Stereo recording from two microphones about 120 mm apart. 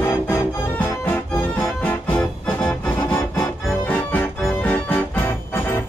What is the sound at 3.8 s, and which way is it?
Music, 15° left (ahead or behind).